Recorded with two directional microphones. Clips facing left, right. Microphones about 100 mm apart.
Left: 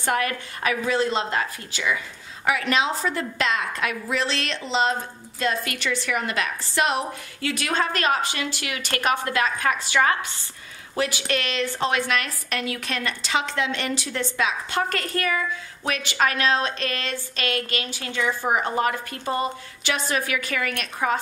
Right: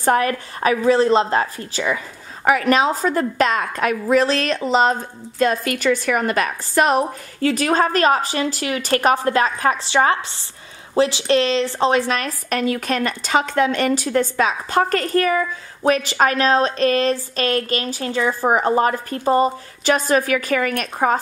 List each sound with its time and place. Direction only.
0.0 s a woman's voice: 35° right (ahead or behind)